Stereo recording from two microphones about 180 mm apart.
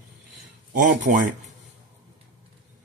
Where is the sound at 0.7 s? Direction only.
45° right (ahead or behind).